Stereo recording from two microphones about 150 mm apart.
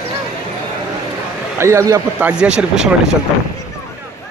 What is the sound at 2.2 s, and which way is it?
Speech, 5° right (ahead or behind).